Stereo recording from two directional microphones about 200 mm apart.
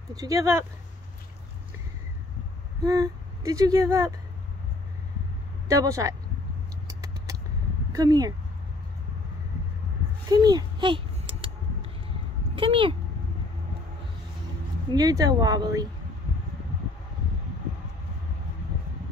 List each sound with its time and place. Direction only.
0.1 s speech: 15° right (ahead or behind)
2.8 s speech: 20° right (ahead or behind)
5.7 s speech: 15° right (ahead or behind)
6.9 s vehicle: 15° right (ahead or behind)
7.9 s speech: 20° right (ahead or behind)
10.2 s a sound: 20° right (ahead or behind)
12.5 s speech: 25° right (ahead or behind)
14.9 s speech: 20° right (ahead or behind)